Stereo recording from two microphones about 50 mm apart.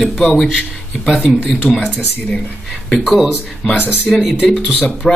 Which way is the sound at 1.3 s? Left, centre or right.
Centre.